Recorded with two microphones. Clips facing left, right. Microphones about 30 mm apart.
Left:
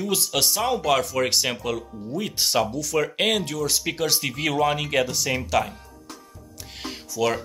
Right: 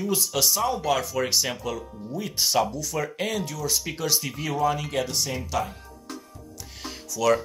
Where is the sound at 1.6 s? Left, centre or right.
Left.